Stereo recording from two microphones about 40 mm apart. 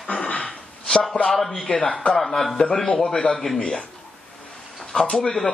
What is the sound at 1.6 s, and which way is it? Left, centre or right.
Speech, left.